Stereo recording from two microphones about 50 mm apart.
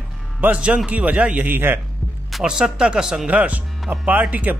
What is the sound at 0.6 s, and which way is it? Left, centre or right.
Speech, right.